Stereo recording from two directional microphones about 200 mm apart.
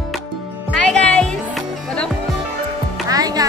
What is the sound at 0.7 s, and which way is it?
Music, 5° left (ahead or behind).